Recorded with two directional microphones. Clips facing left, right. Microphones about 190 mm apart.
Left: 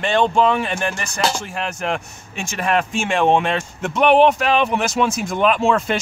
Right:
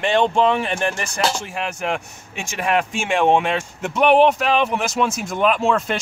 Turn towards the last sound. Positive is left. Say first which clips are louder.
# left 2 dB
turn(degrees=0)  # may be behind; listen again after turning